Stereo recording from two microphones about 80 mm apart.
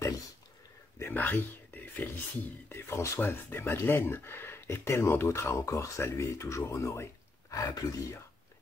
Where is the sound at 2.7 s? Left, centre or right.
Left.